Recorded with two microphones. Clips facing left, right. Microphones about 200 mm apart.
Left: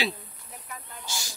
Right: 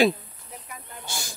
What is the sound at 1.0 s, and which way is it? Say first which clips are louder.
Snake: right 2 dB; 55° right (ahead or behind).